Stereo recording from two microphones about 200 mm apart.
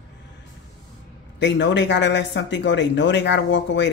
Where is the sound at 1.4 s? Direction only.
60° left (ahead or behind).